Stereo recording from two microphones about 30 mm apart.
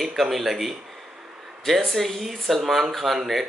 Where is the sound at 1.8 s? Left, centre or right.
Centre.